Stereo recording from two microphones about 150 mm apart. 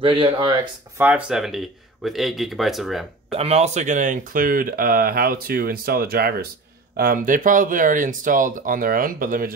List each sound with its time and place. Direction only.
0.0 s speech: 35° right (ahead or behind)
0.9 s speech: 10° right (ahead or behind)
3.3 s speech: 45° right (ahead or behind); by 6.4 s 85° right
7.0 s speech: 70° right (ahead or behind)